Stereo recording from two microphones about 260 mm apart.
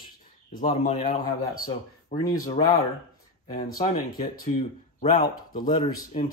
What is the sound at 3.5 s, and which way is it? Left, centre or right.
Speech, centre.